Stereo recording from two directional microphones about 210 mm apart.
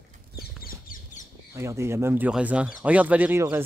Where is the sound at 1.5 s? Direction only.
15° right (ahead or behind).